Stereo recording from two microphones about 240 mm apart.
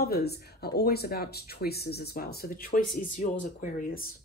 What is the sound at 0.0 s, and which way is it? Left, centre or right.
Speech, left.